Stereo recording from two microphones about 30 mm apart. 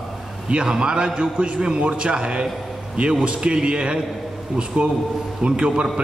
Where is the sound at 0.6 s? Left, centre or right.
Right.